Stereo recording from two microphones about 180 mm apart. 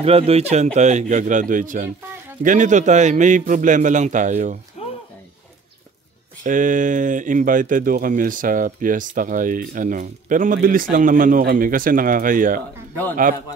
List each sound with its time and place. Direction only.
0.0 s speech: 35° right (ahead or behind)
4.8 s a sound: 35° left (ahead or behind)
6.4 s speech: 45° right (ahead or behind)